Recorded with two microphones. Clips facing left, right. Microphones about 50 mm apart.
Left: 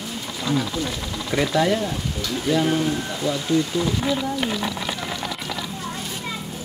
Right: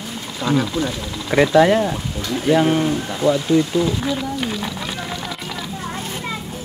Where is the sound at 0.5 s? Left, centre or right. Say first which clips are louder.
Right 5 dB; right.